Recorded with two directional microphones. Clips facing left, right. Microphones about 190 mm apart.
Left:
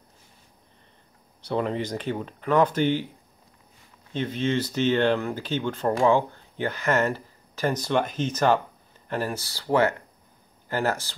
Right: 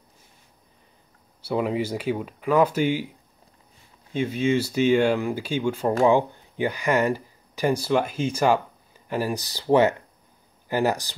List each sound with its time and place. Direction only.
1.4 s speech: 5° right (ahead or behind)
4.1 s speech: 10° right (ahead or behind)